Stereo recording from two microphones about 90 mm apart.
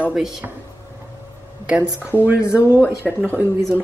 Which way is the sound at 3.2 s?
25° right (ahead or behind).